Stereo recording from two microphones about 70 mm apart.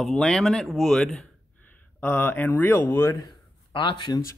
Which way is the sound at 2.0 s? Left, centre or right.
Left.